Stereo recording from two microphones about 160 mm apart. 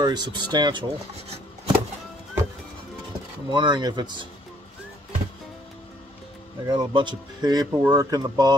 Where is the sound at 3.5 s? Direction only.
30° right (ahead or behind).